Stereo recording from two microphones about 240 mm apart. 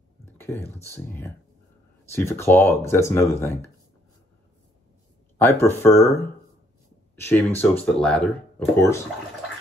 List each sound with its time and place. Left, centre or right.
0.2 s a sound: centre
0.9 s speech: centre
5.4 s speech: centre
7.2 s speech: centre